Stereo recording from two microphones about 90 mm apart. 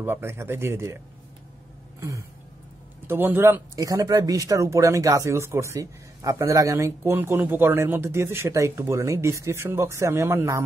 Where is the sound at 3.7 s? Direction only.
40° right (ahead or behind).